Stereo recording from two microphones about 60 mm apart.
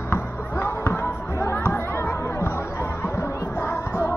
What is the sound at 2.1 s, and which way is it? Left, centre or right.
Chatter, left.